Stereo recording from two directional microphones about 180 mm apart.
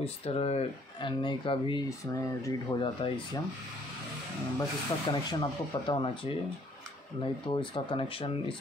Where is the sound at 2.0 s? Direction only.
15° left (ahead or behind).